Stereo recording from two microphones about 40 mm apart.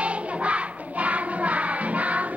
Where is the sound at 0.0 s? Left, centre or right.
Right.